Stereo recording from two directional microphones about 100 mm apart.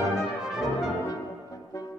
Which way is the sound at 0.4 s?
5° right (ahead or behind).